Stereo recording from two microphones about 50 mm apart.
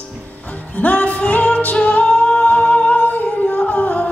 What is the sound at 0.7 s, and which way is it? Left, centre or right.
Music, left.